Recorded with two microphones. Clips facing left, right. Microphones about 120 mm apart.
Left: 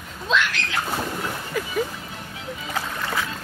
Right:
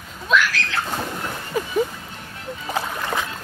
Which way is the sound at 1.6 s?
25° right (ahead or behind).